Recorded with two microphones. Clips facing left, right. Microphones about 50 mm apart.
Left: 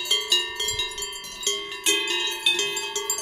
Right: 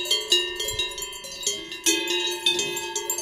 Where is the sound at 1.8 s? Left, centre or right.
Centre.